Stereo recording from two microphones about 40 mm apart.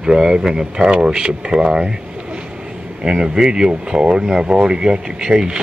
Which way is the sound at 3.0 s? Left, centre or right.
Centre.